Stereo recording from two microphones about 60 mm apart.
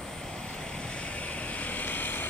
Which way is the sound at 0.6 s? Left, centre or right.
Centre.